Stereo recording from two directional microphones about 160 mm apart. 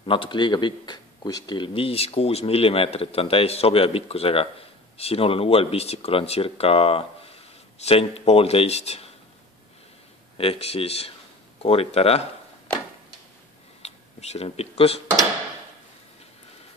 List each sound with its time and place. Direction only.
0.0 s speech: 35° left (ahead or behind)
10.3 s speech: 35° left (ahead or behind)
13.8 s speech: 40° left (ahead or behind)